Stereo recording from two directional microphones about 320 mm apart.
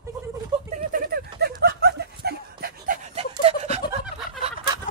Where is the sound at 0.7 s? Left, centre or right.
Right.